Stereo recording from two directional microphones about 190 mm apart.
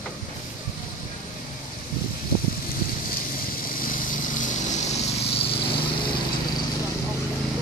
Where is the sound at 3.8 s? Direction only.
45° left (ahead or behind).